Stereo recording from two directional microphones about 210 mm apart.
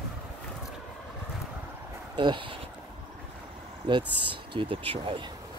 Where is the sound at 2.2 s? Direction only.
20° right (ahead or behind).